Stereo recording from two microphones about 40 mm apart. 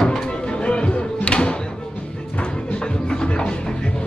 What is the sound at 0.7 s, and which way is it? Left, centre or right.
Music, left.